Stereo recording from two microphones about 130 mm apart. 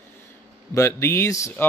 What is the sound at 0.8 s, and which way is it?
Speech, 20° left (ahead or behind).